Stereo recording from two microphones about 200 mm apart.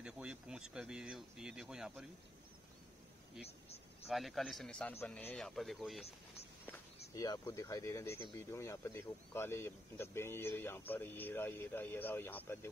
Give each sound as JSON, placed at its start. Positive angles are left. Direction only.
{"t": 0.0, "sound": "speech", "side_deg": -5}
{"t": 4.1, "sound": "speech", "side_deg": 0}
{"t": 6.6, "sound": "speech", "side_deg": 15}